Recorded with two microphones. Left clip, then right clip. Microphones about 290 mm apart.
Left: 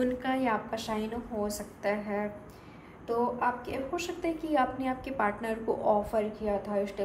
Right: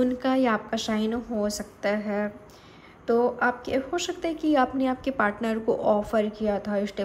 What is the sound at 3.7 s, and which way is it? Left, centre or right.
A woman's voice, right.